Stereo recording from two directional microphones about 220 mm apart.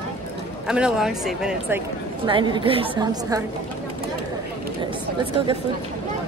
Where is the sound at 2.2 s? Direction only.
20° right (ahead or behind).